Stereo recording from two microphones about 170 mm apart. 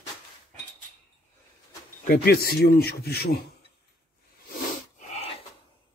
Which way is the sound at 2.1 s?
65° left (ahead or behind).